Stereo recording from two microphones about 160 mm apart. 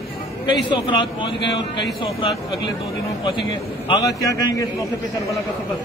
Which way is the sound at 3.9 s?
20° left (ahead or behind).